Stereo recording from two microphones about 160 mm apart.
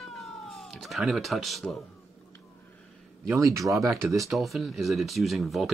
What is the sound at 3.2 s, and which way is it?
Speech, 20° right (ahead or behind).